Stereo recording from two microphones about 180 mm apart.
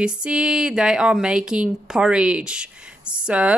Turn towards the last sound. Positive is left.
turn(degrees=-5)  # may be behind; listen again after turning